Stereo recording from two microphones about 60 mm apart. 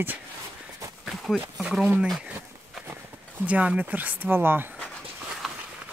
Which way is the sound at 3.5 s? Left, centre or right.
Right.